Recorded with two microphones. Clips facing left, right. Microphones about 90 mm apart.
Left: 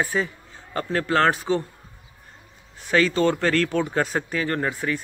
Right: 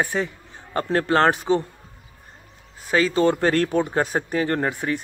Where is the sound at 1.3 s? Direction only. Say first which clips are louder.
Right 2 dB; 20° right (ahead or behind).